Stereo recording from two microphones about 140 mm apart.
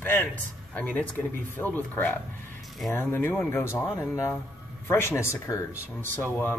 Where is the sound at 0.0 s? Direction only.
15° left (ahead or behind).